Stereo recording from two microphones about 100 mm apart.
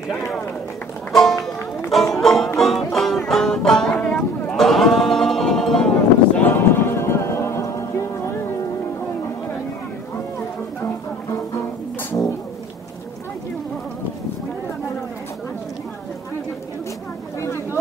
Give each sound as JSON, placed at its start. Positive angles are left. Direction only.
{"t": 1.9, "sound": "music", "side_deg": 0}
{"t": 6.5, "sound": "music", "side_deg": 20}
{"t": 12.0, "sound": "a sound", "side_deg": 20}